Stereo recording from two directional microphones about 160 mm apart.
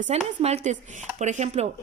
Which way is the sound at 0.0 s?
40° right (ahead or behind).